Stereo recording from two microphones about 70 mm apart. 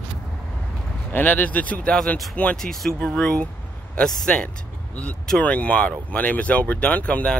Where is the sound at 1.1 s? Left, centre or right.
Left.